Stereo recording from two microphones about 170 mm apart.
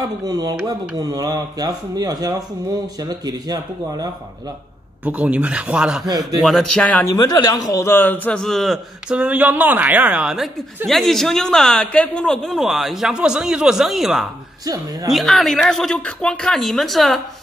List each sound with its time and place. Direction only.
0.0 s speech: 25° right (ahead or behind)
5.0 s speech: 10° right (ahead or behind)
6.0 s speech: 20° right (ahead or behind)
6.4 s speech: centre (ahead or behind)
7.2 s a man's voice: 20° left (ahead or behind); by 17.2 s centre (ahead or behind)